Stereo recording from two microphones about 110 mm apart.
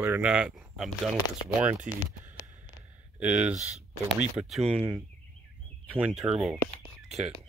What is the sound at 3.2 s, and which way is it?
Speech, 10° right (ahead or behind).